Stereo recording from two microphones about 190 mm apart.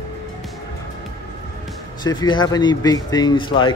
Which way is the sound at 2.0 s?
20° left (ahead or behind).